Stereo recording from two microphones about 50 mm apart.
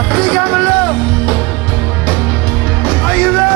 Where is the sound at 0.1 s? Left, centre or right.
Left.